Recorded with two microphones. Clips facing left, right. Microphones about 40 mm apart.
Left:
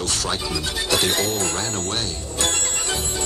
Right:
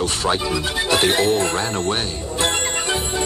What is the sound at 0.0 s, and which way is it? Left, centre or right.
Music, right.